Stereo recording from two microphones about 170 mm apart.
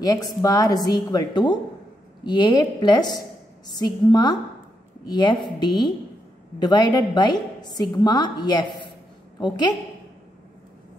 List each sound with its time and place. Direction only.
0.0 s a woman's voice: 20° left (ahead or behind)